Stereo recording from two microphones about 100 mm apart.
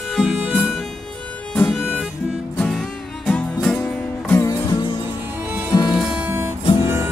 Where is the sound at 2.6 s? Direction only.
5° left (ahead or behind).